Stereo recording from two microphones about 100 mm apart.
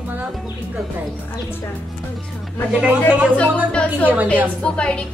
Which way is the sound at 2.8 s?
10° right (ahead or behind).